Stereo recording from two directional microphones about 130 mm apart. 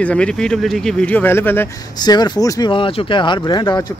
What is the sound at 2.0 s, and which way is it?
Speech, 35° left (ahead or behind).